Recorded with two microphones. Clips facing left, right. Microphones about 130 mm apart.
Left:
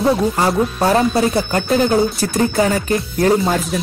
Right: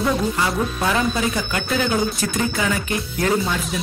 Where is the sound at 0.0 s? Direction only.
35° left (ahead or behind).